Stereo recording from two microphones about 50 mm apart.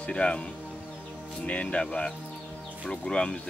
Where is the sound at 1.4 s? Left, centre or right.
Left.